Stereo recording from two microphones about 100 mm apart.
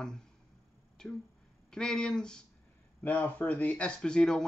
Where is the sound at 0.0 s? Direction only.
5° left (ahead or behind).